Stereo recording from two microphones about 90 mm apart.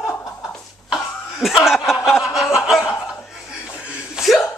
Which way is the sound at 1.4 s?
Centre (ahead or behind).